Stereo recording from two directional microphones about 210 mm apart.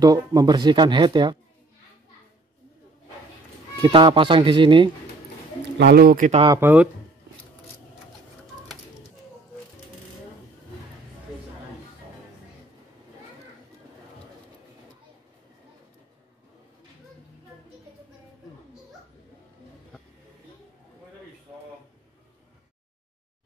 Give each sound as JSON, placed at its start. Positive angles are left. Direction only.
{"t": 0.0, "sound": "speech", "side_deg": -15}
{"t": 3.8, "sound": "speech", "side_deg": -20}
{"t": 5.8, "sound": "speech", "side_deg": -50}
{"t": 6.4, "sound": "speech", "side_deg": -15}